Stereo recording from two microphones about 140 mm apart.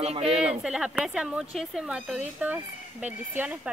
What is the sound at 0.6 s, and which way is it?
Speech, 5° right (ahead or behind).